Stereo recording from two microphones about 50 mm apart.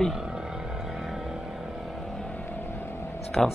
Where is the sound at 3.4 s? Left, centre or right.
Centre.